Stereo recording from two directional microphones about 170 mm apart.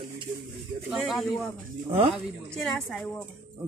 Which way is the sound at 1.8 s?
35° right (ahead or behind).